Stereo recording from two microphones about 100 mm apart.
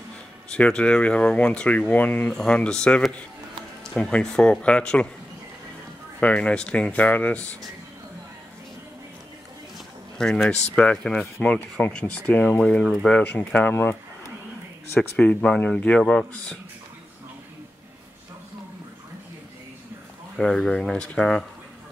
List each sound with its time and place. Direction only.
0.5 s speech: 10° left (ahead or behind)
6.2 s speech: 10° left (ahead or behind)
10.1 s speech: 5° left (ahead or behind)
20.3 s speech: 5° left (ahead or behind)